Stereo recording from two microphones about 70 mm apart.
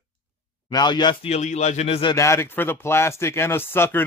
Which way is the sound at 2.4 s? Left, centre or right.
Left.